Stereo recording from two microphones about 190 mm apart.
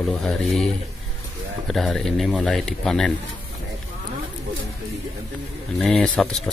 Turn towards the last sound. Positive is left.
turn(degrees=0)  # may be behind; listen again after turning